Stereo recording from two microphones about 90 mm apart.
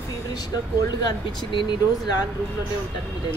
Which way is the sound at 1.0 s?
65° left (ahead or behind).